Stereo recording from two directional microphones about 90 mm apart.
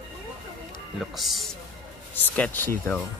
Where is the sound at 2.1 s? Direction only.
15° left (ahead or behind).